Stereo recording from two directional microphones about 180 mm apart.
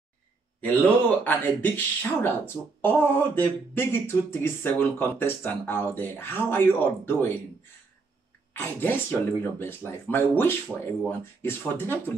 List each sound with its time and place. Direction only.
0.6 s speech: 10° left (ahead or behind)
8.5 s speech: 10° left (ahead or behind)